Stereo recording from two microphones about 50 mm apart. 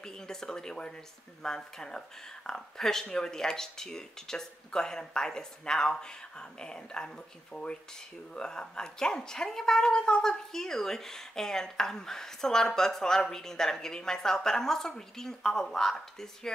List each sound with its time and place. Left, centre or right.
0.0 s a woman's voice: centre